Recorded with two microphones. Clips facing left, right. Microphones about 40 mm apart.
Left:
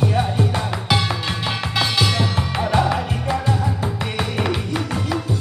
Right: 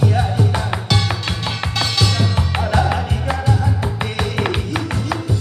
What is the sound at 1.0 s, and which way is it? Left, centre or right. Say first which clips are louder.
Music: even; centre.